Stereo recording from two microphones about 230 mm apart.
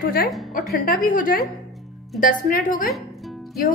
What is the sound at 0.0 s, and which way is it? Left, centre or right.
A woman's voice, left.